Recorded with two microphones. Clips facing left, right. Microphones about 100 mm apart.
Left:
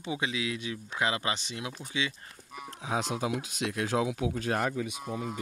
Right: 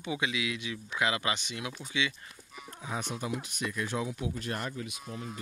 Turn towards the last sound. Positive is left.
turn(degrees=90)